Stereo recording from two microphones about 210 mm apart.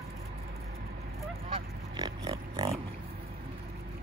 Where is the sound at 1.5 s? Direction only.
25° right (ahead or behind).